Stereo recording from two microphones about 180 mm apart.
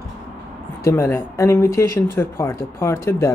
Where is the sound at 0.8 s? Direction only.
15° left (ahead or behind).